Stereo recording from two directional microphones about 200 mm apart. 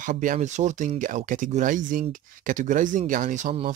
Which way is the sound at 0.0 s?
40° right (ahead or behind).